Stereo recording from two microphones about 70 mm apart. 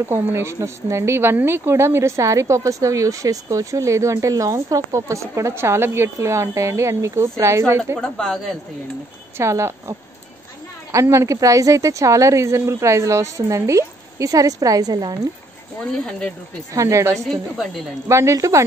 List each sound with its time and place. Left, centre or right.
0.1 s a woman's voice: right
8.0 s speech: centre
9.4 s a woman's voice: right
15.8 s speech: centre
16.7 s a woman's voice: right